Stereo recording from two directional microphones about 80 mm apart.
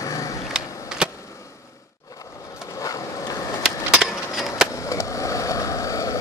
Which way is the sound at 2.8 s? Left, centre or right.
Left.